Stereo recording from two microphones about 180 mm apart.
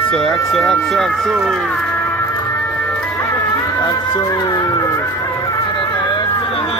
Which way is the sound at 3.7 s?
20° left (ahead or behind).